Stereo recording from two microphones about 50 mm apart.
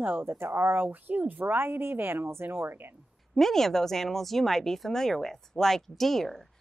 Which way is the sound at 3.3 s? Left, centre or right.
Centre.